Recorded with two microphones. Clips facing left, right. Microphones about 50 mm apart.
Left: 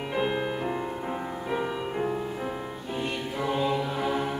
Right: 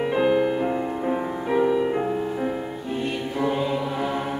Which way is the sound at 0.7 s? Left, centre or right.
Centre.